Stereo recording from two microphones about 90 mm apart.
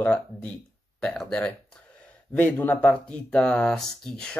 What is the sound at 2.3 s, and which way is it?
Speech, 20° left (ahead or behind).